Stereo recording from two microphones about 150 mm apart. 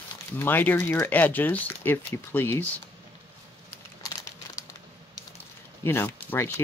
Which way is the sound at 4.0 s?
20° left (ahead or behind).